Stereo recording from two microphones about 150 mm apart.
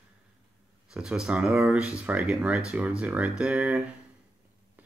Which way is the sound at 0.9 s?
5° right (ahead or behind).